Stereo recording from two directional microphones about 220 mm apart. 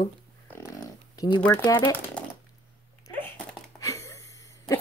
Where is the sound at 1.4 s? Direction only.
10° left (ahead or behind).